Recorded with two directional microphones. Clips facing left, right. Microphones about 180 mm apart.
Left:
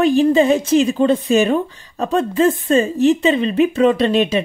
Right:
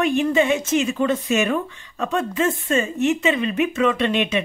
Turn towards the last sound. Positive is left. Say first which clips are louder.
# left 5 dB
turn(degrees=35)  # may be behind; listen again after turning